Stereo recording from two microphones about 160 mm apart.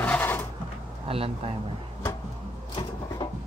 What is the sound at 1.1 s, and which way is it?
Speech, 35° right (ahead or behind).